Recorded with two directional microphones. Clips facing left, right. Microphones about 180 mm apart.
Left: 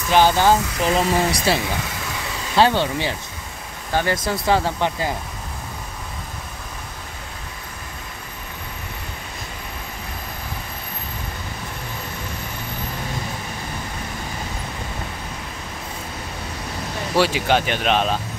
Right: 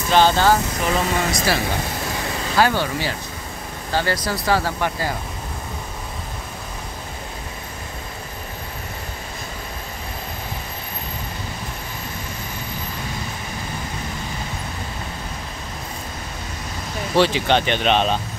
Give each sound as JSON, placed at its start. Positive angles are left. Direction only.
{"t": 0.1, "sound": "speech", "side_deg": 15}
{"t": 0.8, "sound": "speech", "side_deg": 35}
{"t": 2.5, "sound": "speech", "side_deg": 25}
{"t": 17.1, "sound": "speech", "side_deg": 5}